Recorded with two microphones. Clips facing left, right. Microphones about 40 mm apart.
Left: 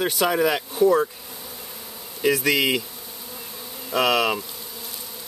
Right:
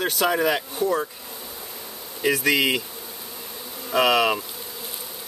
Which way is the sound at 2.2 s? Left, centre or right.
Centre.